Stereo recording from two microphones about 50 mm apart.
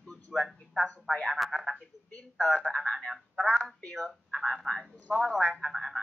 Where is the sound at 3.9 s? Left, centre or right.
Centre.